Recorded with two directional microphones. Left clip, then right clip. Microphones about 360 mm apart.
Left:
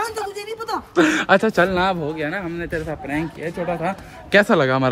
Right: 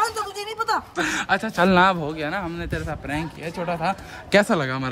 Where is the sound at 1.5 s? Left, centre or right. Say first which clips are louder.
Right 1 dB; centre.